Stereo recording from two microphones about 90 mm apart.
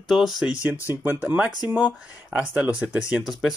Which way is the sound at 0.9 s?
25° right (ahead or behind).